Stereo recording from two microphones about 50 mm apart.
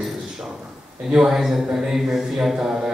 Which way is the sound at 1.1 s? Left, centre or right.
Centre.